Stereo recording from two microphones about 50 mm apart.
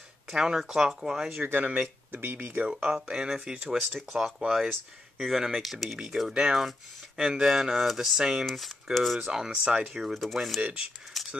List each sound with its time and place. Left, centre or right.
0.3 s speech: centre
1.4 s speech: right
2.1 s speech: right
2.6 s speech: centre
9.3 s speech: centre
10.3 s speech: centre
10.6 s speech: right
11.1 s a sound: centre